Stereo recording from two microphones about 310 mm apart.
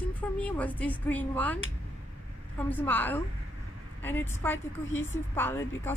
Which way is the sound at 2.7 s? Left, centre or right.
Centre.